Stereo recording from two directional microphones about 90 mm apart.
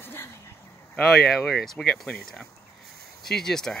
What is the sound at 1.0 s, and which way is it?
Speech, 5° left (ahead or behind).